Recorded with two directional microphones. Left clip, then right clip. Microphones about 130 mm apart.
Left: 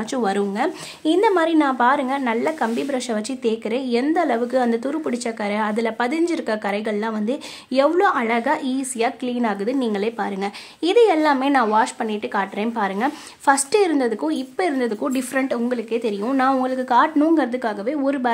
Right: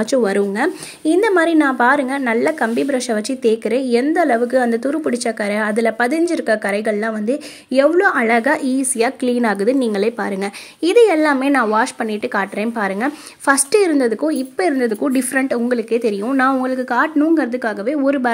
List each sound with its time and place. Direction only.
0.0 s speech: 25° right (ahead or behind)